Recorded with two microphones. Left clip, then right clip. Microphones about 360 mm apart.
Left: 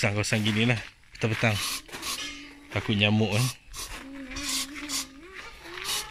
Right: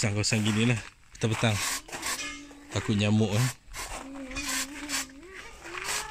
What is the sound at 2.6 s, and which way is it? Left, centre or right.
Speech, centre.